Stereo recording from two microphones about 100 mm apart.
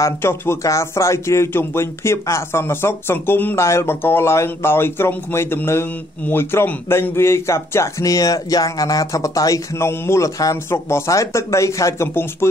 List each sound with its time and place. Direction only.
0.0 s speech: 25° left (ahead or behind)